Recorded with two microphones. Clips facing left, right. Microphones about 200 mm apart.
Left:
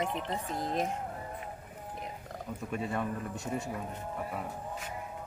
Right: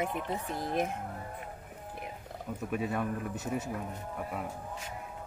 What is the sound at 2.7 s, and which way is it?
Speech, 5° right (ahead or behind).